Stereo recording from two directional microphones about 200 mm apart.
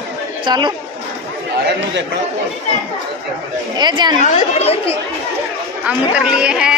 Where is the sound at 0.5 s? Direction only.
20° right (ahead or behind).